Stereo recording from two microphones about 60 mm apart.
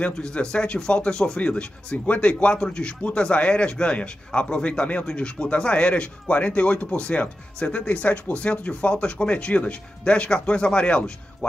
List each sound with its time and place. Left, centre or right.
0.0 s speech: centre